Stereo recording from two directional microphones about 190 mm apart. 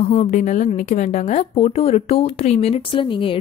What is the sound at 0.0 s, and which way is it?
A woman's voice, 35° left (ahead or behind).